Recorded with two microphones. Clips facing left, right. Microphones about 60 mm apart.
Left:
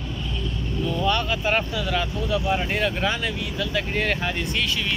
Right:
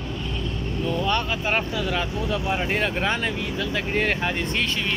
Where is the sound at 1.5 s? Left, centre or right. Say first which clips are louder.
Even; right.